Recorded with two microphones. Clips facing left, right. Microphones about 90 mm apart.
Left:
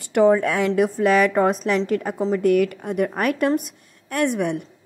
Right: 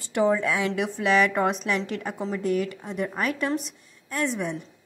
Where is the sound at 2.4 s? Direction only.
60° left (ahead or behind).